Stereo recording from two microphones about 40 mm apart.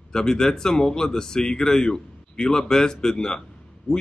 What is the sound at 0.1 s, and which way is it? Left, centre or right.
Speech, centre.